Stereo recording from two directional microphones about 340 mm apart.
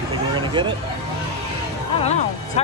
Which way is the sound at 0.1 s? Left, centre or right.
Centre.